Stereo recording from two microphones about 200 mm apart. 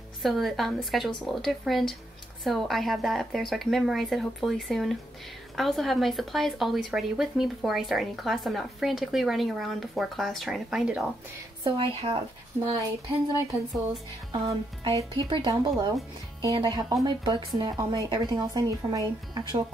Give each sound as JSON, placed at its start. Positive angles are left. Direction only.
{"t": 0.2, "sound": "speech", "side_deg": 0}
{"t": 11.6, "sound": "speech", "side_deg": -25}
{"t": 14.3, "sound": "speech", "side_deg": -20}